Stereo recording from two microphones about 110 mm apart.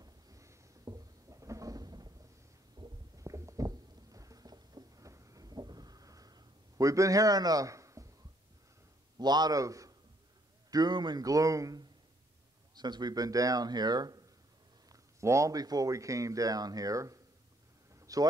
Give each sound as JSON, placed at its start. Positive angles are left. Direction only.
{"t": 0.0, "sound": "cupboard open or close", "side_deg": -30}
{"t": 2.8, "sound": "stomach rumble", "side_deg": -40}
{"t": 3.2, "sound": "a sound", "side_deg": -30}
{"t": 9.2, "sound": "a man's voice", "side_deg": -40}
{"t": 14.9, "sound": "speech", "side_deg": -25}
{"t": 17.9, "sound": "vehicle", "side_deg": -30}